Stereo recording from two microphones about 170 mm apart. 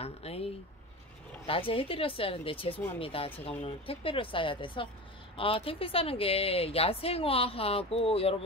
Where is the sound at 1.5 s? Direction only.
35° left (ahead or behind).